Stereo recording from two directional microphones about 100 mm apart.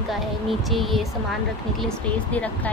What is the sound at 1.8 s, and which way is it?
Speech, 10° left (ahead or behind).